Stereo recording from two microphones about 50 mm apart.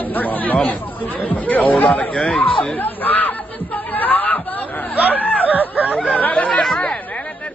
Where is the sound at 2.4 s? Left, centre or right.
Left.